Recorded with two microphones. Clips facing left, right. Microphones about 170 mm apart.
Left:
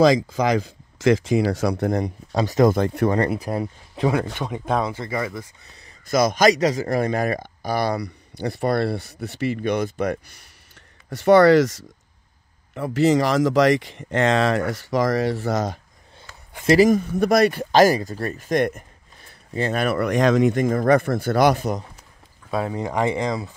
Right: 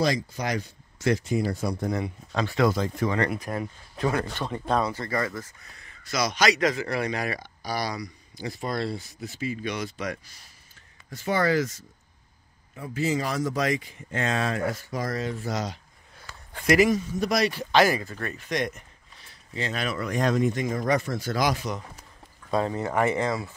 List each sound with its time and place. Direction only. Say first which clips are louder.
0.7 s speech: left 7 dB; 90° left; by 2.0 s 70° left (ahead or behind)
2.0 s speech: left 5 dB; 40° left (ahead or behind); by 3.1 s 60° left (ahead or behind)
3.1 s speech: left 5 dB; 35° left (ahead or behind)
4.1 s speech: left 4 dB; 10° left (ahead or behind)
6.0 s speech: left 7 dB; 50° left (ahead or behind)
6.6 s speech: left 5 dB; 35° left (ahead or behind); by 9.6 s 70° left (ahead or behind)
9.6 s speech: left 9 dB; 55° left (ahead or behind)
11.1 s speech: left 12 dB; 70° left (ahead or behind)
15.5 s speech: left 7 dB; 50° left (ahead or behind)
16.2 s a sound: left 1 dB; 25° left (ahead or behind)
16.9 s speech: left 7 dB; 55° left (ahead or behind); by 20.5 s 90° left
20.5 s speech: left 8 dB; 55° left (ahead or behind)
22.5 s speech: left 1 dB; 10° left (ahead or behind)